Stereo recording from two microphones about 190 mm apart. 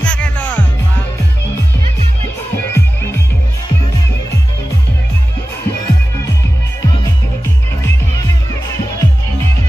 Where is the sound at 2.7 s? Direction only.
15° left (ahead or behind).